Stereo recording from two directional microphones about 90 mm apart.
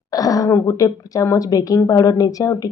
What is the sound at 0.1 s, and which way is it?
Speech, 40° left (ahead or behind).